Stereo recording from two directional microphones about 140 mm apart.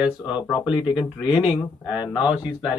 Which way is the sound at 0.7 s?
5° right (ahead or behind).